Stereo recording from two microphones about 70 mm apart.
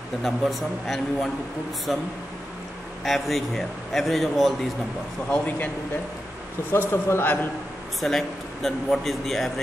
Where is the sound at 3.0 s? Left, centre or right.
Centre.